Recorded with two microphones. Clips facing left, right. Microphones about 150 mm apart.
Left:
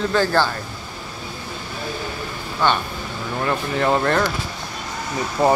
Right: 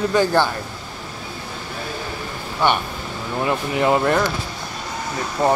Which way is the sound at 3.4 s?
15° right (ahead or behind).